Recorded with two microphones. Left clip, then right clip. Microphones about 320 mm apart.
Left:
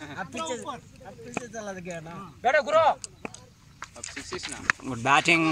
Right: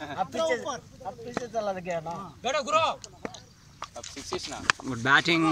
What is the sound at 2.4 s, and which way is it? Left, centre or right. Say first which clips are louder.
Speech: left 5 dB; left.